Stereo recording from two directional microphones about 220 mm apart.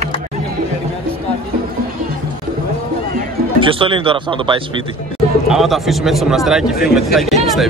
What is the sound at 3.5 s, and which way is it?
Speech, 25° right (ahead or behind).